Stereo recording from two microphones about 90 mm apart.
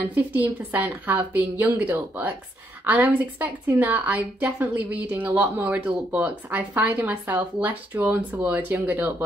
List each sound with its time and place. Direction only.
0.1 s a woman's voice: 20° right (ahead or behind)